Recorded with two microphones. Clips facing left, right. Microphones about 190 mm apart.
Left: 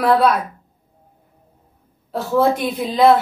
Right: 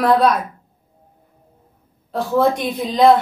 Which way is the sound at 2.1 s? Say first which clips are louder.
Even; 5° left (ahead or behind).